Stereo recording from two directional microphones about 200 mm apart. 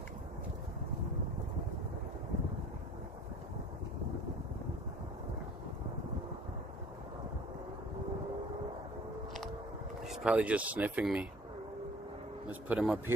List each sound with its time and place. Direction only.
10.0 s speech: 5° right (ahead or behind)
12.4 s a man's voice: 5° right (ahead or behind)